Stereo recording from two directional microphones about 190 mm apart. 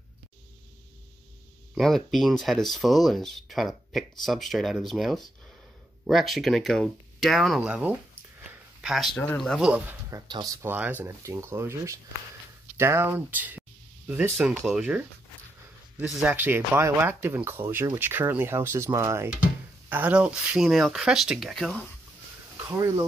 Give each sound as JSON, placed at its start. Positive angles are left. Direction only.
{"t": 1.8, "sound": "speech", "side_deg": 0}
{"t": 8.4, "sound": "a sound", "side_deg": 0}
{"t": 9.2, "sound": "speech", "side_deg": 5}
{"t": 22.7, "sound": "speech", "side_deg": -15}